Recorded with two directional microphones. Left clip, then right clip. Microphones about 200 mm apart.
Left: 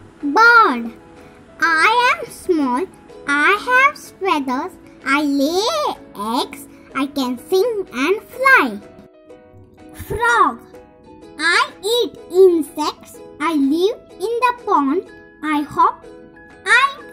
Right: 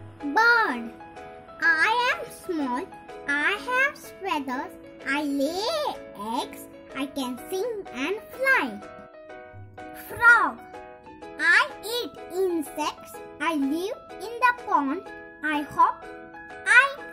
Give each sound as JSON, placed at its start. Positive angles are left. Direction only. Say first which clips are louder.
{"t": 0.3, "sound": "music", "louder": "left 10 dB", "side_deg": 10}
{"t": 1.6, "sound": "a child's voice", "louder": "left 8 dB", "side_deg": 10}
{"t": 10.1, "sound": "a child's voice", "louder": "left 3 dB", "side_deg": 5}
{"t": 16.6, "sound": "music", "louder": "left 4 dB", "side_deg": 0}